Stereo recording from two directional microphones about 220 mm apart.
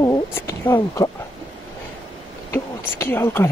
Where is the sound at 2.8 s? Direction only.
10° left (ahead or behind).